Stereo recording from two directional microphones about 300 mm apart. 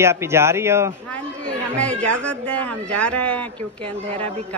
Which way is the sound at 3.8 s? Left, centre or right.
Centre.